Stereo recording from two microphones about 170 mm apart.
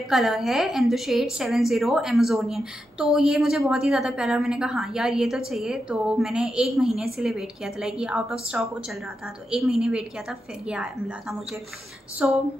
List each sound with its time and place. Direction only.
0.1 s a woman's voice: centre (ahead or behind)